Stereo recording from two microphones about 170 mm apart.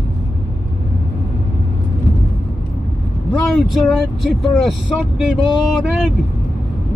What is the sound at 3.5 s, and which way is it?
Speech, centre (ahead or behind).